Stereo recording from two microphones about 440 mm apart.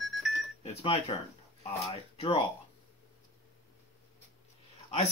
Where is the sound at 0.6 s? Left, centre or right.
Centre.